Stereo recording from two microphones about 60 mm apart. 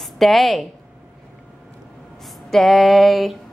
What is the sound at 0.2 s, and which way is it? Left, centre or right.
Speech, centre.